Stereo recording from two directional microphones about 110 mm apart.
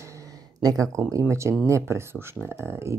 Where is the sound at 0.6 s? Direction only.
35° right (ahead or behind).